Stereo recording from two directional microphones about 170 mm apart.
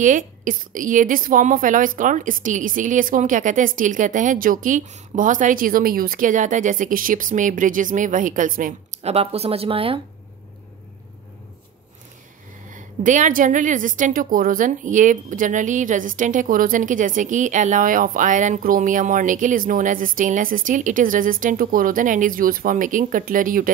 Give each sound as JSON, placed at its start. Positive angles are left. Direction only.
{"t": 0.0, "sound": "a woman's voice", "side_deg": -50}
{"t": 9.0, "sound": "speech", "side_deg": -35}
{"t": 12.7, "sound": "a woman's voice", "side_deg": -50}